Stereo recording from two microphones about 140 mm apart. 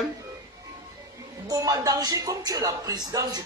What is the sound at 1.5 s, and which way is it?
A man's voice, 25° right (ahead or behind).